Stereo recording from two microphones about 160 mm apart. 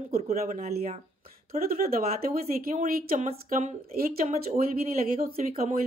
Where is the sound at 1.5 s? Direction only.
65° right (ahead or behind).